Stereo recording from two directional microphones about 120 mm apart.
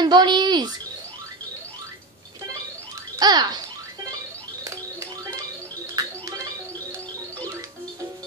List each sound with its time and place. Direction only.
0.0 s speech: 40° right (ahead or behind)
3.2 s speech: 35° right (ahead or behind)
5.9 s music: 30° right (ahead or behind)